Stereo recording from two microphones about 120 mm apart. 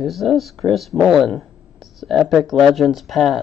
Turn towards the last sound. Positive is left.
turn(degrees=0)  # may be behind; listen again after turning